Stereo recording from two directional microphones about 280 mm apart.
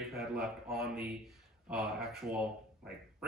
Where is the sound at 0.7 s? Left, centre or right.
Centre.